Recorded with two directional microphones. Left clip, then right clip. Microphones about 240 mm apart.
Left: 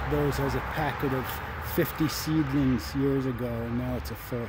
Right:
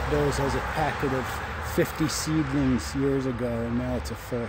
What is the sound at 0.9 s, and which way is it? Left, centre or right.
Speech, right.